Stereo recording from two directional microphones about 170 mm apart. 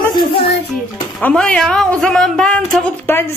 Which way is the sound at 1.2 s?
5° left (ahead or behind).